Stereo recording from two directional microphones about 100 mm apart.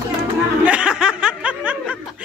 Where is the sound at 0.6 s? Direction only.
10° right (ahead or behind).